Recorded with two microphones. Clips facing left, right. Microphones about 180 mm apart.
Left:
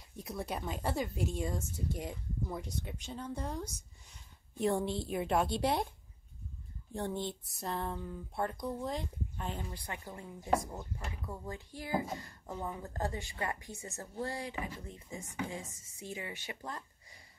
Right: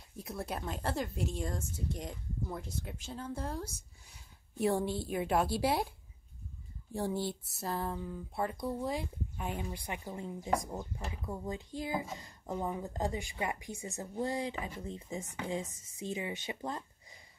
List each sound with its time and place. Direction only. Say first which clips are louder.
0.1 s speech: even; centre (ahead or behind)
6.9 s speech: right 2 dB; 5° right (ahead or behind); by 16.8 s 20° right (ahead or behind)